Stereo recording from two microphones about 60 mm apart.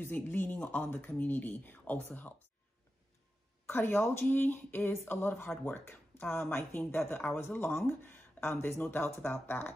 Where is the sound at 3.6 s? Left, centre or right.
Left.